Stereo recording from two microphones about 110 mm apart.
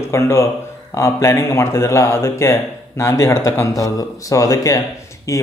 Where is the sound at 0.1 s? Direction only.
25° left (ahead or behind).